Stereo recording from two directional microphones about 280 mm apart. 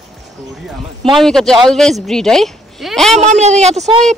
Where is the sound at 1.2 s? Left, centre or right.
Centre.